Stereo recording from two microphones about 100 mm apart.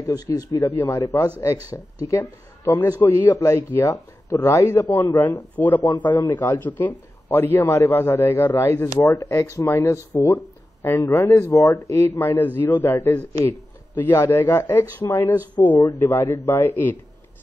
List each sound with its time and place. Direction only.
0.0 s speech: 35° left (ahead or behind)
0.7 s a man's voice: 20° left (ahead or behind)